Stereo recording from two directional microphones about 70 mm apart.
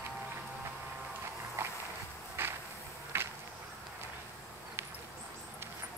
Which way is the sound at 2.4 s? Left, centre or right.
Right.